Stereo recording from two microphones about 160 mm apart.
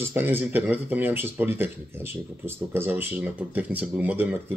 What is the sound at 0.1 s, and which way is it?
Speech, 15° right (ahead or behind).